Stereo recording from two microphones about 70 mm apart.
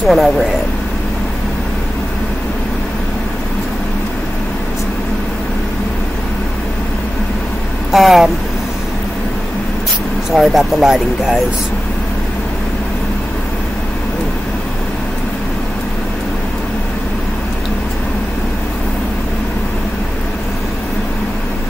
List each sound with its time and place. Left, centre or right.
0.0 s speech: centre
7.9 s speech: centre
10.3 s speech: centre